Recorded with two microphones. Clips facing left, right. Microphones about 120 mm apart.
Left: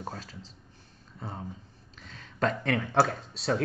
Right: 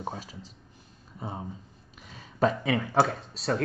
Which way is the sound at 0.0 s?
10° right (ahead or behind).